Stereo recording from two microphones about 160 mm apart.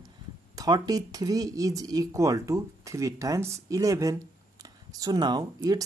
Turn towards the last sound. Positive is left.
turn(degrees=-25)  # may be behind; listen again after turning